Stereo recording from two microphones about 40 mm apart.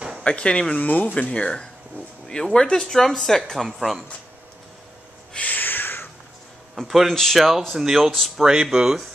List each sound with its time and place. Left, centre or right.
0.2 s speech: left
2.2 s speech: centre
3.6 s speech: centre
5.4 s a sound: left
6.7 s a man's voice: centre
8.1 s speech: centre
8.5 s speech: centre